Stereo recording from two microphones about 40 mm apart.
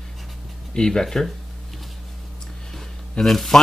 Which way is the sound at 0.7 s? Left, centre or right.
Centre.